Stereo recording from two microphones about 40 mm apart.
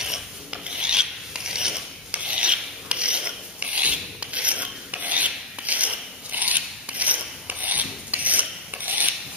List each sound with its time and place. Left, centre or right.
0.5 s filing: right
2.0 s filing: right